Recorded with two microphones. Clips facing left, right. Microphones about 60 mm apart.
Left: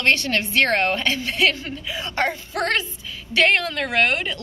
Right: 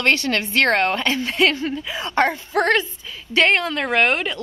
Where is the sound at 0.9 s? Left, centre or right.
Centre.